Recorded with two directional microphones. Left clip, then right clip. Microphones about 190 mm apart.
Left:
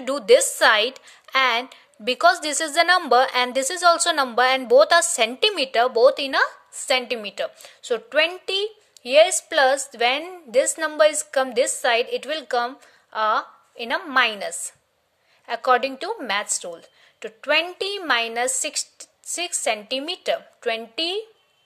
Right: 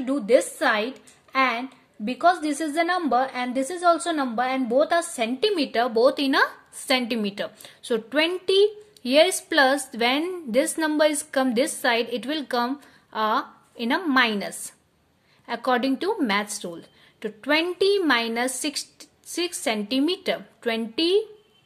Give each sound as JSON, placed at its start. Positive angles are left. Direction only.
{"t": 0.0, "sound": "a woman's voice", "side_deg": 45}